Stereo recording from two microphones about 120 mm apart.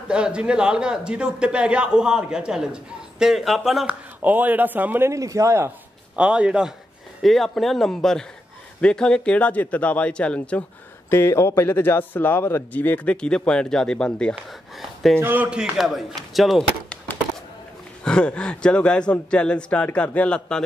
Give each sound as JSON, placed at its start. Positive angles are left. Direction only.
{"t": 0.1, "sound": "a man's voice", "side_deg": -10}
{"t": 4.2, "sound": "a man's voice", "side_deg": -15}
{"t": 6.1, "sound": "a man's voice", "side_deg": -10}
{"t": 11.1, "sound": "a man's voice", "side_deg": 20}
{"t": 15.1, "sound": "speech", "side_deg": -15}
{"t": 18.0, "sound": "a man's voice", "side_deg": 10}